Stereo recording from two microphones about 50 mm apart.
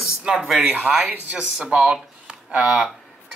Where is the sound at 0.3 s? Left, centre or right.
Centre.